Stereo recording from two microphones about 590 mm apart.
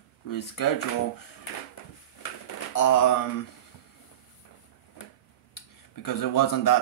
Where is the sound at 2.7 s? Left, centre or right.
Left.